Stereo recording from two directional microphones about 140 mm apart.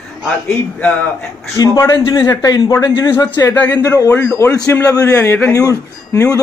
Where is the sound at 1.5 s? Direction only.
25° left (ahead or behind).